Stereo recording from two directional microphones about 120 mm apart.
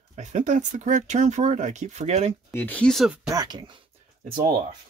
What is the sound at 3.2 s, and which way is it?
Speech, 35° right (ahead or behind).